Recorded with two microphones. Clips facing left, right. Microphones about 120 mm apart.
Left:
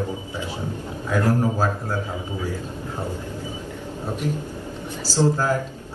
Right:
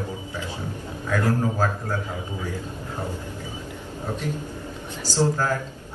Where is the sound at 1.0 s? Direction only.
15° left (ahead or behind).